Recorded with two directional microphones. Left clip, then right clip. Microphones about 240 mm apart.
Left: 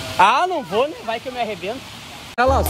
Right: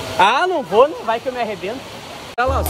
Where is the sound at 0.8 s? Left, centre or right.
Left.